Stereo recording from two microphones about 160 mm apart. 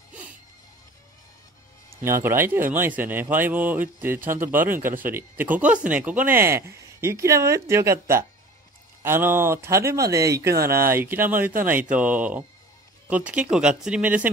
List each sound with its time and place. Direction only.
0.1 s music: 10° right (ahead or behind)
2.0 s speech: 15° right (ahead or behind)